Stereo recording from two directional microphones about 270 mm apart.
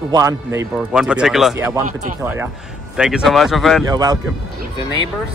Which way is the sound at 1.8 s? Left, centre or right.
Right.